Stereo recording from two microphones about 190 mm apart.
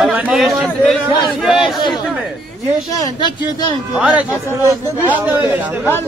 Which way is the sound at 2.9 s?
20° left (ahead or behind).